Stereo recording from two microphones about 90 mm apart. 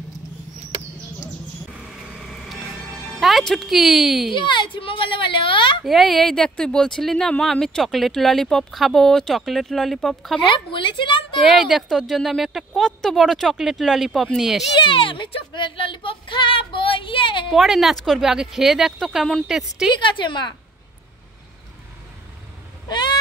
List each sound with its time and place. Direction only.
2.2 s vehicle: centre (ahead or behind)
3.2 s speech: centre (ahead or behind)
4.3 s speech: 65° left (ahead or behind)
5.9 s speech: centre (ahead or behind)
10.4 s a woman's voice: 65° left (ahead or behind)
11.6 s speech: centre (ahead or behind)
14.8 s speech: 75° left (ahead or behind)
17.5 s speech: centre (ahead or behind)
19.9 s a woman's voice: 65° left (ahead or behind)